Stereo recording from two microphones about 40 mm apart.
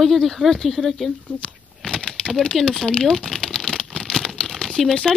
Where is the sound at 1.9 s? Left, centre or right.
Left.